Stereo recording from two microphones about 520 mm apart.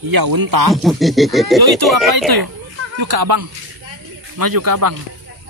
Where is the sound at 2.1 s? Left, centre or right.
Right.